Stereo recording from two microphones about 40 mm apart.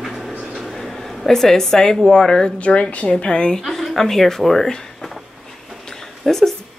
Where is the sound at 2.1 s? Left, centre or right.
Centre.